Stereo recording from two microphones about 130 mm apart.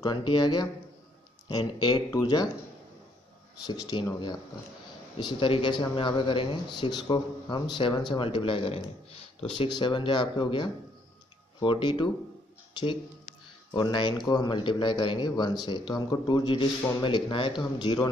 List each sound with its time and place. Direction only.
0.0 s a man's voice: 35° left (ahead or behind)
3.6 s a man's voice: 30° left (ahead or behind); by 9.7 s 50° left (ahead or behind)
9.8 s a man's voice: 40° left (ahead or behind)
13.7 s a man's voice: 35° left (ahead or behind)